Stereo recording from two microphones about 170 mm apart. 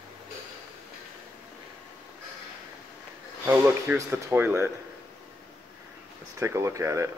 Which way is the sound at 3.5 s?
15° right (ahead or behind).